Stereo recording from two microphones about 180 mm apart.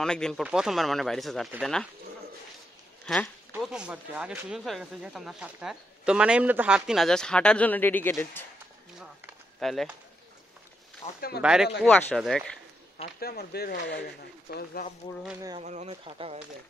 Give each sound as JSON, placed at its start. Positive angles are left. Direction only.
{"t": 0.0, "sound": "speech", "side_deg": 5}
{"t": 3.1, "sound": "speech", "side_deg": 5}
{"t": 9.0, "sound": "a sound", "side_deg": 0}
{"t": 11.1, "sound": "speech", "side_deg": 55}
{"t": 11.4, "sound": "speech", "side_deg": -5}
{"t": 11.8, "sound": "speech", "side_deg": 10}
{"t": 13.2, "sound": "speech", "side_deg": 60}
{"t": 15.6, "sound": "speech", "side_deg": -40}